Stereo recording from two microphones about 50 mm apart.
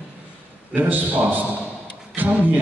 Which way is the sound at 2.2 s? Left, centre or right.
Right.